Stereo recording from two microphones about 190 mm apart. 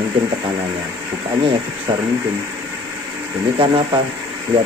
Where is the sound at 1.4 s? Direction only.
25° right (ahead or behind).